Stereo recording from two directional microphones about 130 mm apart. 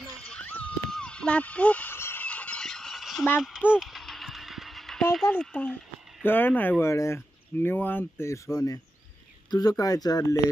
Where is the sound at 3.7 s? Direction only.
Centre (ahead or behind).